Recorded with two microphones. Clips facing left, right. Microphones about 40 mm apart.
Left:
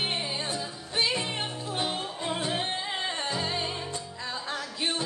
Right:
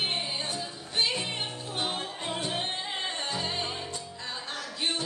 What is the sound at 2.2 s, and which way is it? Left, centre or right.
Music, centre.